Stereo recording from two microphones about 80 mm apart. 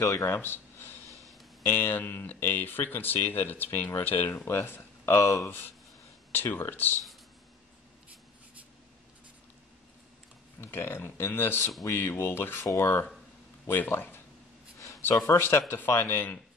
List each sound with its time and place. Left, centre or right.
0.0 s speech: left
6.3 s speech: left
10.6 s speech: left
14.8 s a sound: left
15.1 s speech: left